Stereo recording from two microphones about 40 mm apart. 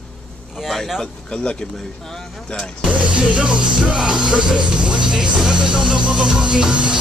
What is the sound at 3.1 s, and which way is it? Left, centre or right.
Music, right.